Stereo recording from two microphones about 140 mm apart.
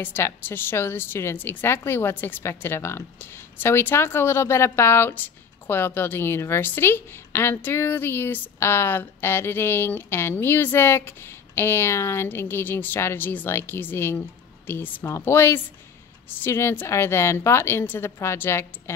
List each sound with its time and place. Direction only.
0.0 s a woman's voice: 15° left (ahead or behind)